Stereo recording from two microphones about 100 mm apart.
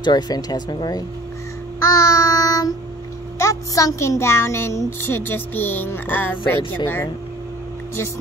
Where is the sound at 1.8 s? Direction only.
30° left (ahead or behind).